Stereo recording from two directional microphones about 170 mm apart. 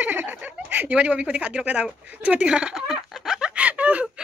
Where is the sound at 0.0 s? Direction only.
10° right (ahead or behind).